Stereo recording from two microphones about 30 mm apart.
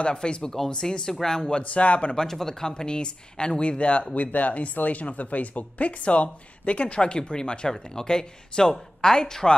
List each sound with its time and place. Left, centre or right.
0.1 s speech: left
1.6 s speech: left
2.6 s speech: left
7.0 s speech: left